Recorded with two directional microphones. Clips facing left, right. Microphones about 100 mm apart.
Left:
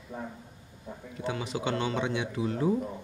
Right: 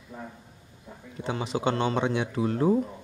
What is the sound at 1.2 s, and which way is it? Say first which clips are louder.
Speech: right 4 dB; 30° right (ahead or behind).